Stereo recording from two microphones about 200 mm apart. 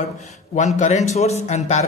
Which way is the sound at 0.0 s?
35° left (ahead or behind).